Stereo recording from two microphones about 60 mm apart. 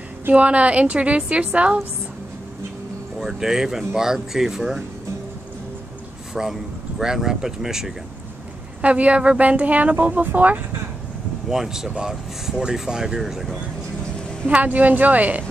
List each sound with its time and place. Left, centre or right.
0.3 s speech: right
3.2 s speech: centre
6.3 s speech: centre
8.8 s speech: right
11.4 s speech: centre
14.5 s speech: right